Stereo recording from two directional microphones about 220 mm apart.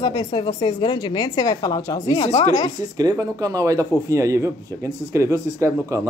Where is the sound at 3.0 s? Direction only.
15° right (ahead or behind).